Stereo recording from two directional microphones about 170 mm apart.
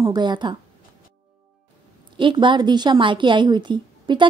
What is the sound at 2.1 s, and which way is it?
A woman's voice, 30° right (ahead or behind).